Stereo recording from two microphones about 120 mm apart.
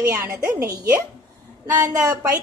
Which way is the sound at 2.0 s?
30° right (ahead or behind).